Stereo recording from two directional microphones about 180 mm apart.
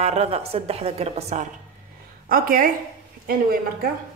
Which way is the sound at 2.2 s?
55° right (ahead or behind).